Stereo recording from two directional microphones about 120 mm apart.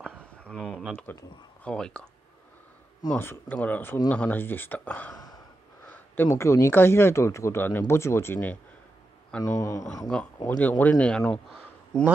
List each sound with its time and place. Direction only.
0.0 s a sound: 10° left (ahead or behind)
1.1 s speech: 15° left (ahead or behind)
3.1 s speech: 15° left (ahead or behind)
5.1 s gasp: 30° left (ahead or behind)
5.9 s speech: 20° left (ahead or behind)
10.5 s speech: 15° left (ahead or behind)